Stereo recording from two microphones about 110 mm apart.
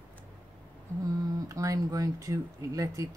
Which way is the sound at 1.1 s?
30° right (ahead or behind).